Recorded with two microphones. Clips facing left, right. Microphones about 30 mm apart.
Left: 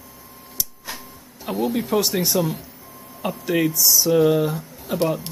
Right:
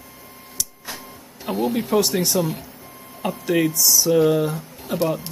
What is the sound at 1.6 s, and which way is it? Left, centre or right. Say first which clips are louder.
Speech: right 1 dB; centre.